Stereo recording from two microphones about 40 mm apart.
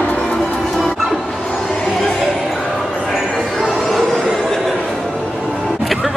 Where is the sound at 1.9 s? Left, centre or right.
Centre.